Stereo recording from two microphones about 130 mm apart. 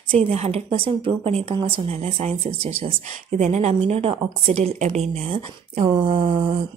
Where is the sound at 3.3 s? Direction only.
65° right (ahead or behind); by 4.8 s 50° right (ahead or behind).